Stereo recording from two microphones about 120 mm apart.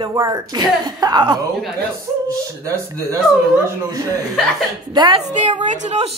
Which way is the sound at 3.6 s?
30° right (ahead or behind).